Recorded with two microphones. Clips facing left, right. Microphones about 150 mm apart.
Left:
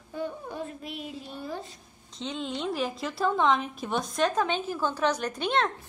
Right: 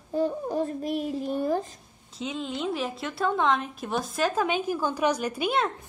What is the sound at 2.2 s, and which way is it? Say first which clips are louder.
A woman's voice: right 2 dB; 5° right (ahead or behind).